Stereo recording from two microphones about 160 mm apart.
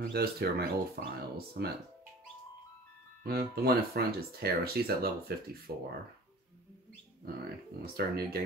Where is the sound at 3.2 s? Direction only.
75° right (ahead or behind).